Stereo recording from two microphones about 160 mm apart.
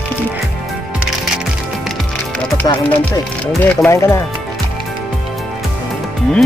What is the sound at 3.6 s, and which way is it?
Speech, 15° left (ahead or behind).